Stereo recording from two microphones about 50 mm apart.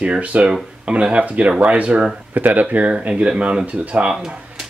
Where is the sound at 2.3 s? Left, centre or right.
Right.